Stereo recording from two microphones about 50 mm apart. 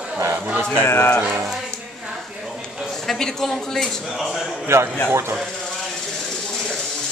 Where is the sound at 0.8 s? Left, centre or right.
Left.